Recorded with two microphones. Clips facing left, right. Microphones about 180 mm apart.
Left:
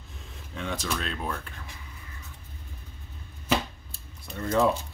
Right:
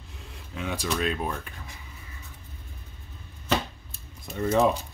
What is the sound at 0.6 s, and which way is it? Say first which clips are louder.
Speech: right 3 dB; 10° right (ahead or behind).